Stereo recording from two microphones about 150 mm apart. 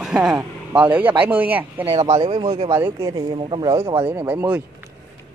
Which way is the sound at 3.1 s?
30° right (ahead or behind).